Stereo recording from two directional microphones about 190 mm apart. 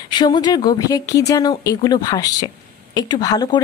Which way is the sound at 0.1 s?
20° left (ahead or behind).